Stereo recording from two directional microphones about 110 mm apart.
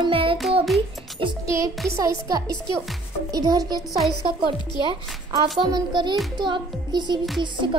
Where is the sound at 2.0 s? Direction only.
35° right (ahead or behind).